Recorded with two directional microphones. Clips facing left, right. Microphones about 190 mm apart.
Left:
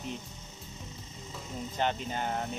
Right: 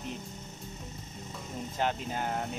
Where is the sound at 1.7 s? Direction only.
5° right (ahead or behind).